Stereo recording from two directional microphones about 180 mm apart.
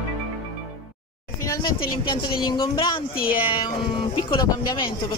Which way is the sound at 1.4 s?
20° left (ahead or behind).